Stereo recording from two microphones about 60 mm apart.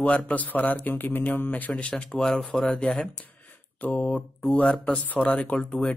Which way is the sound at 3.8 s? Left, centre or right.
Left.